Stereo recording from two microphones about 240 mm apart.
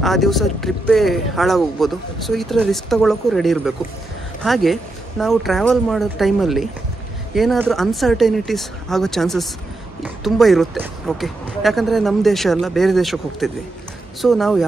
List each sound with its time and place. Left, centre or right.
0.0 s speech: centre